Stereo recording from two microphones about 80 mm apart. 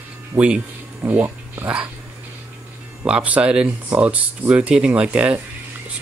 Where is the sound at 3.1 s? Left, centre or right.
Centre.